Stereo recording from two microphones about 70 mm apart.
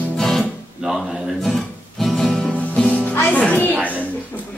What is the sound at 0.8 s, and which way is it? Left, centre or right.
Music, centre.